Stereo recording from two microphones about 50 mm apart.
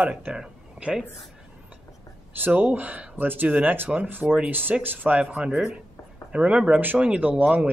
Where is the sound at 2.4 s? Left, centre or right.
Right.